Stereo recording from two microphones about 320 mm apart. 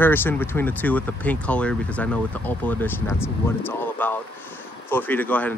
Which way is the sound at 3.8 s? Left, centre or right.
Centre.